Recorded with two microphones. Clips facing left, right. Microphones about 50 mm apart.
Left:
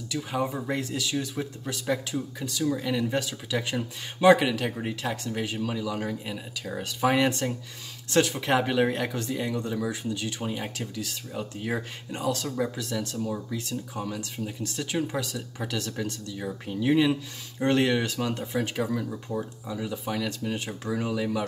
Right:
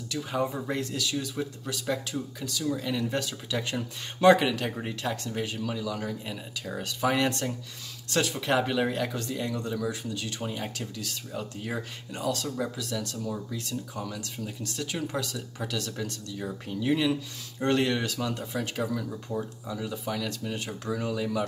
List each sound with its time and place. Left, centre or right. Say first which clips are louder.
0.1 s speech: left 1 dB; centre
6.3 s speech: left 1 dB; centre
7.0 s speech: left 3 dB; centre
9.8 s speech: left 2 dB; left
10.4 s speech: left 2 dB; centre
12.4 s speech: left 2 dB; centre